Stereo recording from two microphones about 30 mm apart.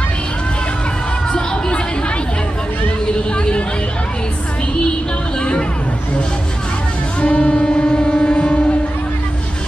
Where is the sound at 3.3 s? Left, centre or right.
Left.